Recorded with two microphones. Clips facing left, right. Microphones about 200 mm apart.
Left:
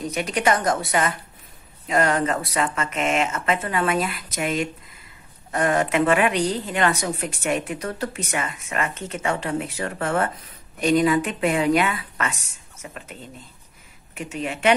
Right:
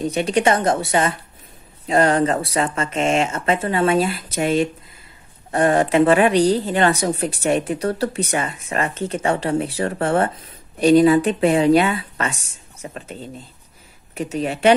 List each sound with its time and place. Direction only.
0.0 s a woman's voice: 30° right (ahead or behind)